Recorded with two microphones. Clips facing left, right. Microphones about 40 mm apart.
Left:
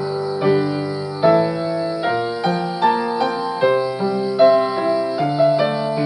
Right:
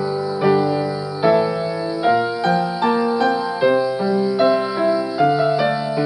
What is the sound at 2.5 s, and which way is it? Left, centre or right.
Music, centre.